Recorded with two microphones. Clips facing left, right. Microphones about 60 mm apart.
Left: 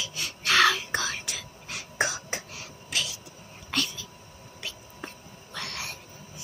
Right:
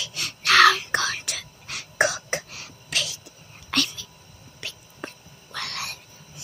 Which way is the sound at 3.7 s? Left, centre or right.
Right.